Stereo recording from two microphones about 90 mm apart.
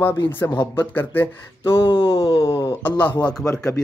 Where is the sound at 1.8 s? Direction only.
75° left (ahead or behind); by 2.6 s 90° left.